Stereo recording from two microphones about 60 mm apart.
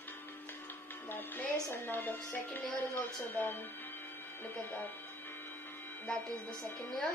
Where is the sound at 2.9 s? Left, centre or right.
Left.